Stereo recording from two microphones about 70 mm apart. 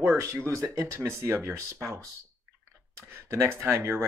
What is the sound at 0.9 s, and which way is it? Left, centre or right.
Speech, right.